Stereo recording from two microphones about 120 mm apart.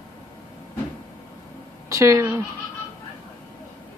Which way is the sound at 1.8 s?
25° right (ahead or behind).